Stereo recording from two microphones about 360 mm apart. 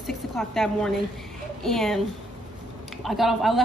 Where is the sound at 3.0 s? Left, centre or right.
Centre.